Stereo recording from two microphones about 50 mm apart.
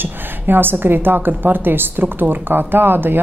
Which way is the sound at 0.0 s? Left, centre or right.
Right.